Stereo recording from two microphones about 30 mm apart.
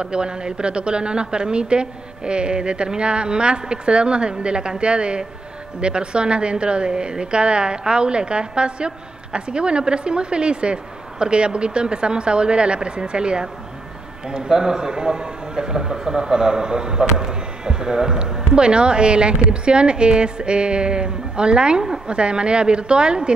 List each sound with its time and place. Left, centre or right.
0.0 s a woman's voice: right